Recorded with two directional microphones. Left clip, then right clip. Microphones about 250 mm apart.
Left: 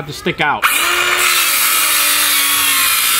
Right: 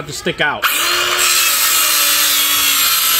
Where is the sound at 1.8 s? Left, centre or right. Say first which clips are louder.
Even; centre.